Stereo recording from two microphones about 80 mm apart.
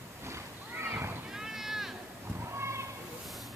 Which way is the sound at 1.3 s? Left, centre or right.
Centre.